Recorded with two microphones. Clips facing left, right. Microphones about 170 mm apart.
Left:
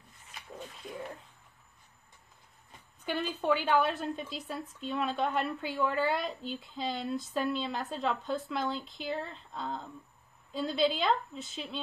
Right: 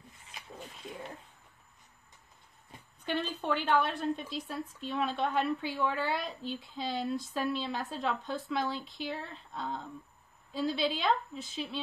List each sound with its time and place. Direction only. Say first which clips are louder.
3.1 s a woman's voice: left 2 dB; 5° left (ahead or behind)